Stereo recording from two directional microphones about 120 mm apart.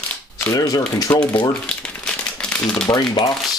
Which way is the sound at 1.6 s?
5° left (ahead or behind).